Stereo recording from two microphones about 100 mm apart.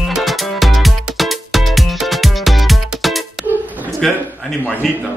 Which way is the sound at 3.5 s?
15° right (ahead or behind).